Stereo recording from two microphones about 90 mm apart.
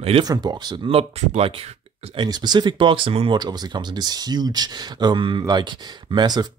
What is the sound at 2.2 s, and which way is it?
Speech, 50° right (ahead or behind).